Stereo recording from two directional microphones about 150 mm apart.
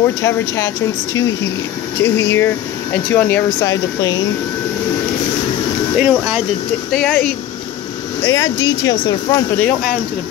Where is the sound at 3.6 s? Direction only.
25° left (ahead or behind).